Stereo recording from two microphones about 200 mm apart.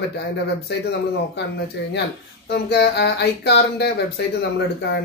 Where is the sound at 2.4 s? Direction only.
55° left (ahead or behind).